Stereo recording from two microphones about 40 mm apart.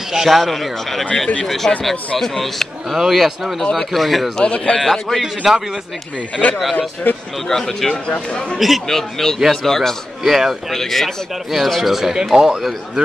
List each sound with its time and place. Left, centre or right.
0.1 s speech: centre
0.4 s a man's voice: centre
3.0 s a man's voice: centre
4.4 s a man's voice: left
4.8 s speech: centre
5.2 s a man's voice: centre
6.4 s speech: left
7.1 s a man's voice: left
7.4 s a man's voice: centre
8.5 s speech: centre
8.8 s a man's voice: centre
10.2 s a man's voice: centre